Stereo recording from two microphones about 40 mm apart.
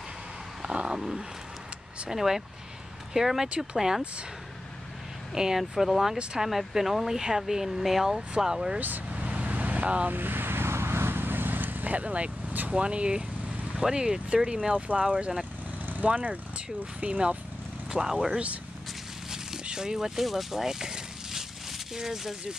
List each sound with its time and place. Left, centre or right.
0.6 s vehicle: right
0.9 s speech: centre
5.3 s speech: centre
8.7 s speech: right
9.1 s vehicle: right
10.0 s vehicle: right
12.7 s speech: right
15.8 s vehicle: right
16.1 s speech: right
17.9 s speech: centre
19.3 s a sound: centre